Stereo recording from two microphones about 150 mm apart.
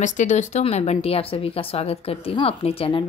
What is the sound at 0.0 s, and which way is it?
Speech, 55° left (ahead or behind).